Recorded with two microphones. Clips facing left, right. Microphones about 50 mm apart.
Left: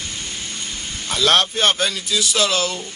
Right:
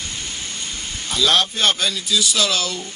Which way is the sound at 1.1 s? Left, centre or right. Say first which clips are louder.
Left 1 dB; left.